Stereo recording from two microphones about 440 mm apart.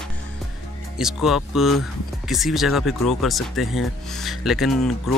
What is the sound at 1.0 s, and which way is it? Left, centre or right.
Speech, centre.